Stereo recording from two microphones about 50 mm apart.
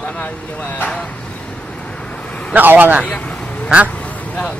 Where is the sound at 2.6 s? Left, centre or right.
Right.